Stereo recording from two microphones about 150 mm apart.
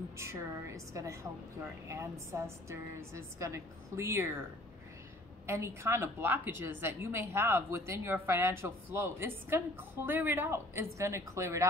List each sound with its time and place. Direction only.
0.2 s a woman's voice: 20° right (ahead or behind)
5.5 s a woman's voice: 15° right (ahead or behind)